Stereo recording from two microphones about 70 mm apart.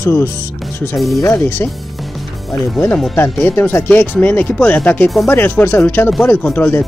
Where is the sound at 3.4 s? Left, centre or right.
Left.